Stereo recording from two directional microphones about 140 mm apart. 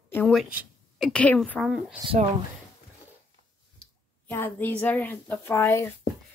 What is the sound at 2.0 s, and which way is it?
Speech, 40° right (ahead or behind).